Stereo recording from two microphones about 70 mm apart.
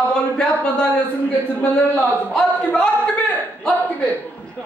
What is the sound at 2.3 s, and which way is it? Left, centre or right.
Speech, centre.